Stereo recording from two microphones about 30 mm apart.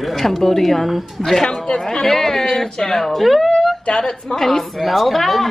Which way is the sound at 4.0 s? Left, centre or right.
Centre.